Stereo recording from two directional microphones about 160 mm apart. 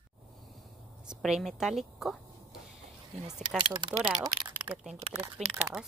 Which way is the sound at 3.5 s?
30° right (ahead or behind).